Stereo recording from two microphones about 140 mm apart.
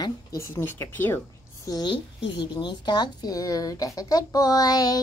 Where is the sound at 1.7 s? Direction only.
30° left (ahead or behind).